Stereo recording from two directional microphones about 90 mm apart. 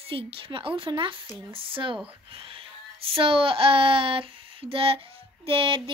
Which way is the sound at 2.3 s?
90° right.